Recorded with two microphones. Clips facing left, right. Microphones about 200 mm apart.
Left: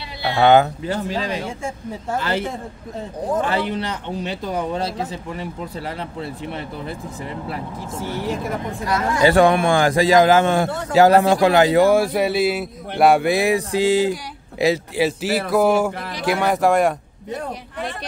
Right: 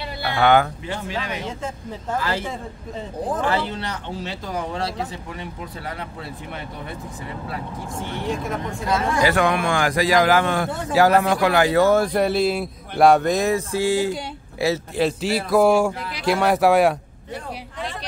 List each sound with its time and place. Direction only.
0.2 s speech: 25° left (ahead or behind)
0.8 s speech: 40° left (ahead or behind)
2.1 s a man's voice: 25° left (ahead or behind)
3.4 s a man's voice: 20° left (ahead or behind)
9.2 s a man's voice: 30° left (ahead or behind)
15.0 s speech: 5° left (ahead or behind)